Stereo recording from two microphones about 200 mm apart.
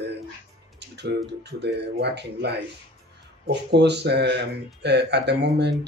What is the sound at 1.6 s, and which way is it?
Speech, 60° right (ahead or behind).